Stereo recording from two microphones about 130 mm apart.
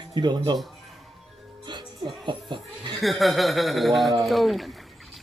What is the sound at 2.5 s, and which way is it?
Chuckle, 35° right (ahead or behind).